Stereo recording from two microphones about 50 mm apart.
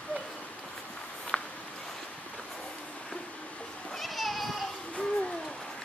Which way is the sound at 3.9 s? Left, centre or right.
Centre.